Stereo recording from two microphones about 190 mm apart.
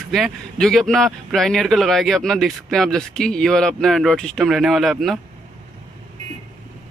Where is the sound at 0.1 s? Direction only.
Centre (ahead or behind).